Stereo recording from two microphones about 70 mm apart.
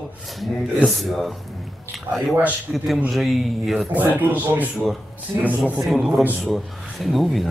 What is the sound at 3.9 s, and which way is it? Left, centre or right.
Speech, right.